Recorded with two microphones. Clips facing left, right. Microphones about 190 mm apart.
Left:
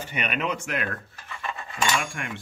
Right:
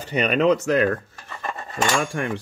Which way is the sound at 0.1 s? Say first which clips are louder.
Right 11 dB; 35° right (ahead or behind).